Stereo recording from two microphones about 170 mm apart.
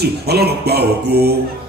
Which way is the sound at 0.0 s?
70° right (ahead or behind).